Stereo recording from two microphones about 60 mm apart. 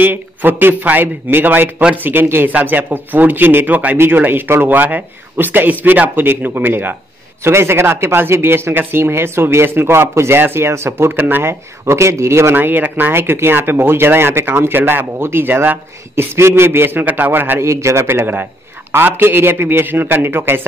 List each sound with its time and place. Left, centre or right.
0.0 s speech: right
7.4 s speech: right
11.1 s speech: right
11.8 s speech: right
12.5 s speech: right
13.1 s speech: right
16.3 s speech: right
17.6 s speech: right
18.0 s speech: right